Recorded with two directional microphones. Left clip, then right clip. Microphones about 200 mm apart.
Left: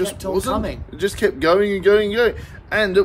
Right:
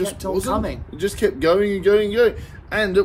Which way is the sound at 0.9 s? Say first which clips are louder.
Left 1 dB; 15° left (ahead or behind).